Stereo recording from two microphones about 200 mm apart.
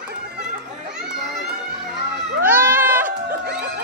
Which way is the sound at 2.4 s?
10° right (ahead or behind).